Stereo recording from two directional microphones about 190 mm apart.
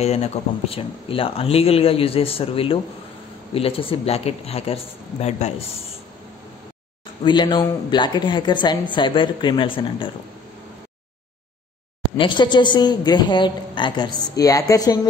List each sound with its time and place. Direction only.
0.0 s speech: 35° left (ahead or behind)
7.2 s speech: 25° left (ahead or behind)
12.2 s speech: 25° left (ahead or behind)